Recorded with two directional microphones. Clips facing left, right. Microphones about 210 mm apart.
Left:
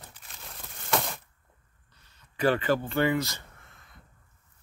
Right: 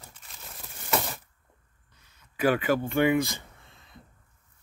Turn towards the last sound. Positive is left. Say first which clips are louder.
# right 2 dB
turn(degrees=-20)  # may be behind; listen again after turning